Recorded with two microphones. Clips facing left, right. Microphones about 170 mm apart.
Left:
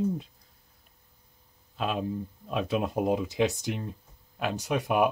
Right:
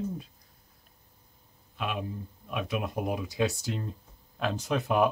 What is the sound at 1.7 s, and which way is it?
Speech, 35° left (ahead or behind).